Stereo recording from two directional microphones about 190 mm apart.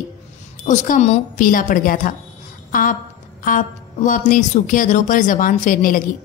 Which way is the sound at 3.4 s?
45° left (ahead or behind).